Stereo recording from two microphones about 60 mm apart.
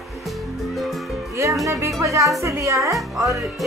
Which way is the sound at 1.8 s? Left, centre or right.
Right.